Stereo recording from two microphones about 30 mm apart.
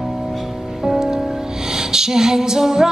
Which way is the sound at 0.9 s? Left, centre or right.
Right.